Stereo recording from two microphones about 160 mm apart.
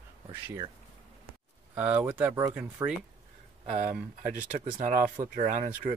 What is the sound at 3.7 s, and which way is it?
Speech, 50° right (ahead or behind).